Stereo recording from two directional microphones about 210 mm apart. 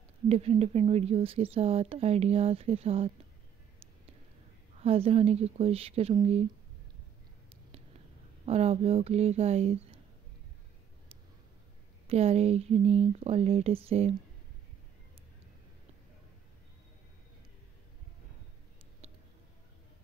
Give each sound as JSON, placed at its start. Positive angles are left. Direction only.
{"t": 0.3, "sound": "speech", "side_deg": -30}
{"t": 4.7, "sound": "speech", "side_deg": -30}
{"t": 8.5, "sound": "speech", "side_deg": -30}
{"t": 12.1, "sound": "speech", "side_deg": -30}